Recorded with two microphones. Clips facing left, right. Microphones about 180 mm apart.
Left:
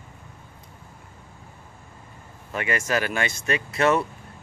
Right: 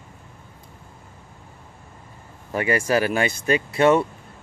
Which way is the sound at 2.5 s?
30° right (ahead or behind).